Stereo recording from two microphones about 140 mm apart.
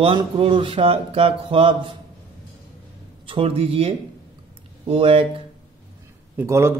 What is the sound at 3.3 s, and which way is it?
A man's voice, 45° right (ahead or behind).